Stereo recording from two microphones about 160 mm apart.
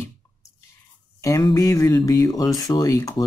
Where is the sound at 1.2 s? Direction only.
20° left (ahead or behind).